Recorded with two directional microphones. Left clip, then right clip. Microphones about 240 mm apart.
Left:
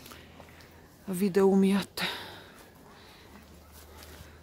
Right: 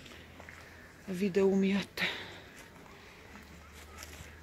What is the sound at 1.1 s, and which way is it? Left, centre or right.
Speech, left.